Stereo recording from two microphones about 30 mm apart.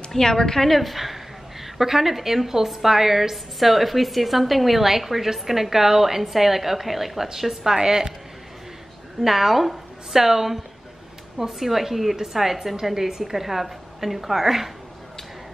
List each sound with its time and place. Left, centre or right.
0.1 s a woman's voice: centre
0.7 s a woman's voice: centre
9.2 s a woman's voice: centre